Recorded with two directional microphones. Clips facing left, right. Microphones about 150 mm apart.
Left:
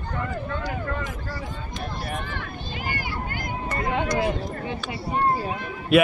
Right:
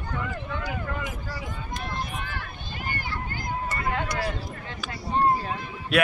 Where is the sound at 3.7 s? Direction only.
20° left (ahead or behind).